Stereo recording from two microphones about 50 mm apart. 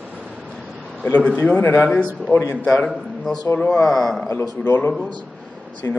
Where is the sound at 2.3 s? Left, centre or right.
Left.